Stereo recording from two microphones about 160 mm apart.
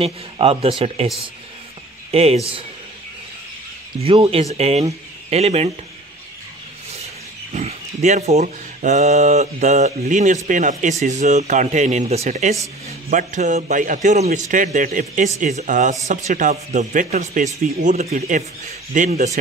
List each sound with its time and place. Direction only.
0.0 s speech: 40° right (ahead or behind)
2.0 s speech: 40° right (ahead or behind)
4.0 s speech: 35° right (ahead or behind)
7.5 s speech: 45° right (ahead or behind)